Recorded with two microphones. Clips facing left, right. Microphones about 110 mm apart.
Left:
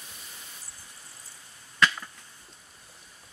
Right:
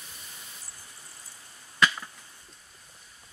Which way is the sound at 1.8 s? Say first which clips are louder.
Even; 5° right (ahead or behind).